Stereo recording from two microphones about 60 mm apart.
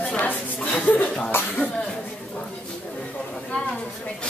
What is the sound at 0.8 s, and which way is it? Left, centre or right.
Chuckle, left.